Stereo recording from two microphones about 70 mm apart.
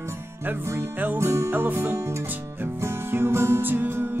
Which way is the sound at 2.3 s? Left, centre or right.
Right.